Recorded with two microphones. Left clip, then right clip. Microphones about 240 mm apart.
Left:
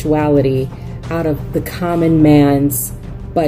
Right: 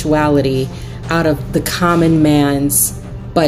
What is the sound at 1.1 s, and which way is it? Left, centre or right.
Speech, centre.